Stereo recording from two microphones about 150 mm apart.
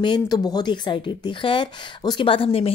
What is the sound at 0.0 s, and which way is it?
Speech, 30° left (ahead or behind).